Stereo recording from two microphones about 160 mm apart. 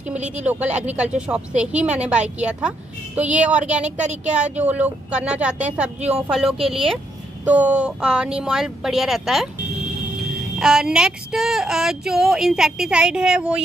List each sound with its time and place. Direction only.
0.5 s a woman's voice: 10° right (ahead or behind)
4.0 s speech: 45° right (ahead or behind)
4.3 s a woman's voice: 10° right (ahead or behind)
10.6 s speech: 5° right (ahead or behind)